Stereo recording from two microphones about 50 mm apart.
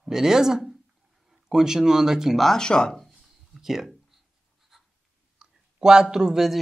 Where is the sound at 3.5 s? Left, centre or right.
Centre.